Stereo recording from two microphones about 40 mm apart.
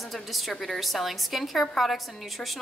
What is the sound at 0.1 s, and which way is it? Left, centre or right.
A woman's voice, centre.